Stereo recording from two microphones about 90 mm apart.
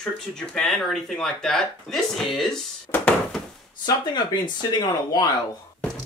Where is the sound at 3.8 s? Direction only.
55° left (ahead or behind).